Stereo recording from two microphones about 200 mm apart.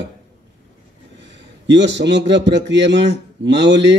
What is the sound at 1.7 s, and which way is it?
A man's voice, 60° right (ahead or behind).